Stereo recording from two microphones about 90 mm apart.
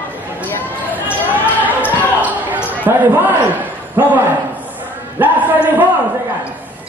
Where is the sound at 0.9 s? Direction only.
20° right (ahead or behind).